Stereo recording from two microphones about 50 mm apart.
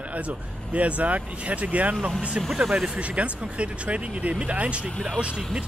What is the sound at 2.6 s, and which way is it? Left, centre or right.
Speech, right.